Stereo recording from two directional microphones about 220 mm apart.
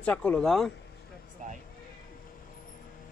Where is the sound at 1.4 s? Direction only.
35° right (ahead or behind).